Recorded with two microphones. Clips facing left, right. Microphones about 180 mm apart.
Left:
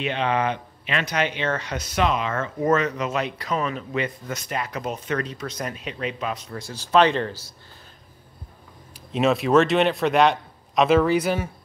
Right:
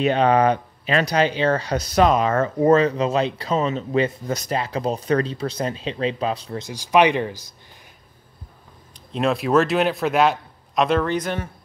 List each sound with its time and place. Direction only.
0.0 s speech: 40° right (ahead or behind)
6.6 s speech: 15° right (ahead or behind)
9.1 s a man's voice: centre (ahead or behind)